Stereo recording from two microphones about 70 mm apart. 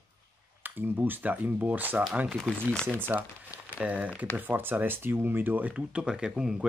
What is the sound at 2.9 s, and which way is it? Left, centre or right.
Speech, right.